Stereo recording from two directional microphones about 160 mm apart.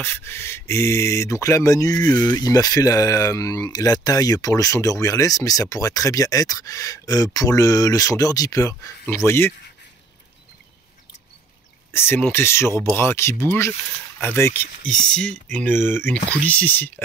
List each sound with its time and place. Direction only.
0.0 s speech: 15° left (ahead or behind)
11.9 s speech: 15° left (ahead or behind)